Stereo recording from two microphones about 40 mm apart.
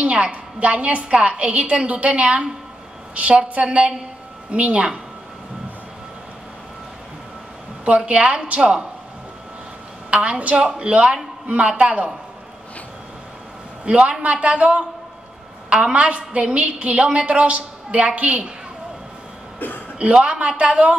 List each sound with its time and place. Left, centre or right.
0.0 s a woman's voice: right
7.8 s a woman's voice: right
10.1 s a woman's voice: right
13.8 s a woman's voice: right
20.2 s a woman's voice: right